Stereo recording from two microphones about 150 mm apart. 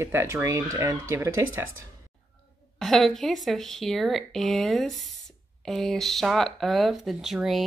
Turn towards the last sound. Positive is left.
turn(degrees=0)  # may be behind; listen again after turning